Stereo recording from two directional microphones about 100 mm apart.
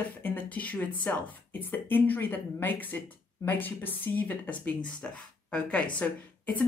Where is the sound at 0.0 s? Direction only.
20° left (ahead or behind).